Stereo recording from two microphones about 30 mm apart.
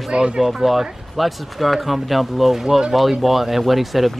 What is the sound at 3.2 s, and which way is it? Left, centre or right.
Speech, centre.